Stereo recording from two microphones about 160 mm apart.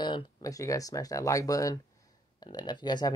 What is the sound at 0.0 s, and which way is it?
Speech, 25° left (ahead or behind).